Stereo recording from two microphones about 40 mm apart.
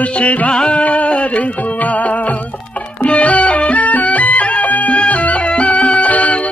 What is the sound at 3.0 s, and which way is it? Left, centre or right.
Music, left.